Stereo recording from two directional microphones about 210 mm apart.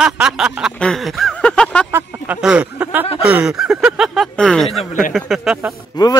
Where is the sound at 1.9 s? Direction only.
5° right (ahead or behind).